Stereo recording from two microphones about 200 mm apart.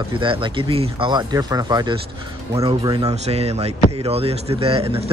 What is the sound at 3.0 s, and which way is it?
Speech, 30° right (ahead or behind).